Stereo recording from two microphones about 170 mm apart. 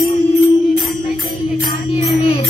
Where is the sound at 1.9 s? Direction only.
35° left (ahead or behind).